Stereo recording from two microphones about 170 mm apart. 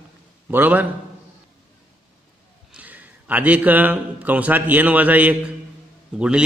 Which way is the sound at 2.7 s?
10° right (ahead or behind).